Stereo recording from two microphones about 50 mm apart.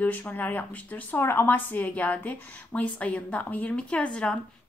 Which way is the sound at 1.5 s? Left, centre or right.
Left.